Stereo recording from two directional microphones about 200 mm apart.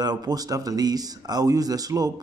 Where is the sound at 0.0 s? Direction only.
20° right (ahead or behind).